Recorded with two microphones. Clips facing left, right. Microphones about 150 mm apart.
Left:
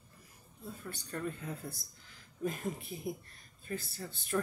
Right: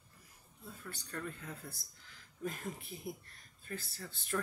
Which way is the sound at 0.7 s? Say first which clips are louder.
Left 5 dB; 20° left (ahead or behind).